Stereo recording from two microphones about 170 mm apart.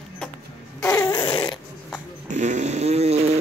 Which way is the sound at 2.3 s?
45° right (ahead or behind).